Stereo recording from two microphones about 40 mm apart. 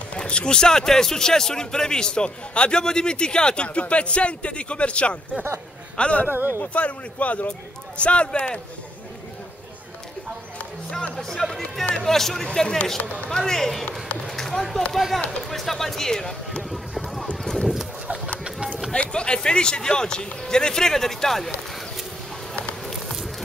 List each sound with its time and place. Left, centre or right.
0.2 s a man's voice: left
6.2 s speech: right
6.7 s a man's voice: left
11.1 s speech: centre
17.4 s a sound: centre
18.0 s a sound: right
18.9 s a man's voice: left; by 21.5 s centre